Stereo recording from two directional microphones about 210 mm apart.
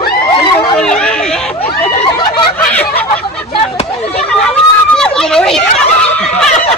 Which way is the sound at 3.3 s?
30° left (ahead or behind).